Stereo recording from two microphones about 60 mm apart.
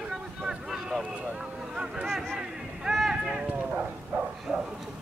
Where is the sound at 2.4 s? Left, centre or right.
Centre.